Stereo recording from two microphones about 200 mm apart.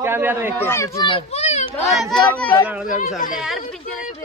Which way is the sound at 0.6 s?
10° left (ahead or behind).